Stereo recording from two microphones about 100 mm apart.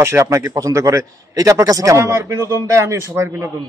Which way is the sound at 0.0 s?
25° right (ahead or behind).